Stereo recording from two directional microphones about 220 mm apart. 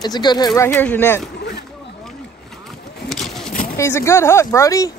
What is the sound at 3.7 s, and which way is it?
Speech, 10° left (ahead or behind).